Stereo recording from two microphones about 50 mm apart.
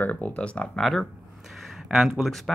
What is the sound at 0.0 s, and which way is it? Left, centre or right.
Speech, left.